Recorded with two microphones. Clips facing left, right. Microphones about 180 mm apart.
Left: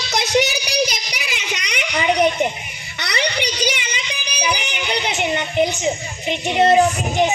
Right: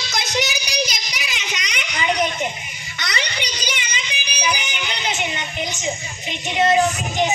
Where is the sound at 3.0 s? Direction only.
60° left (ahead or behind).